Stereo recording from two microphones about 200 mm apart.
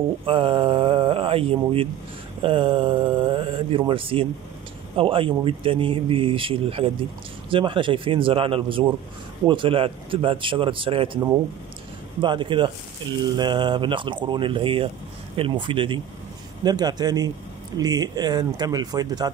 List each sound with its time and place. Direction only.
0.2 s speech: 25° right (ahead or behind)